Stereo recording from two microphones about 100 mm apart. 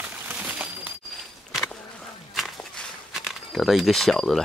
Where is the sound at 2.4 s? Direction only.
Centre (ahead or behind).